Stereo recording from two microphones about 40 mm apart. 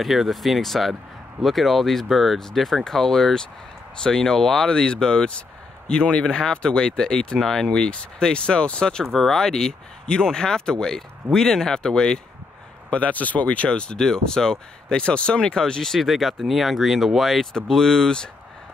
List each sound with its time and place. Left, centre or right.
0.0 s speech: centre
7.9 s speech: left
9.0 s speech: centre
12.9 s speech: left
13.7 s speech: left
16.0 s speech: centre
17.6 s speech: centre